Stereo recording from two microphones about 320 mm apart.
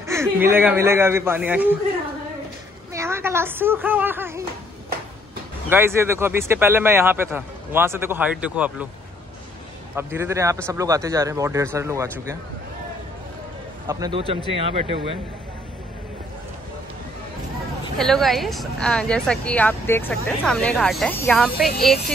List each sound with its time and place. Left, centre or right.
0.0 s speech: centre
2.9 s a sound: centre
5.7 s speech: centre
9.9 s speech: centre
13.8 s speech: centre
17.9 s speech: centre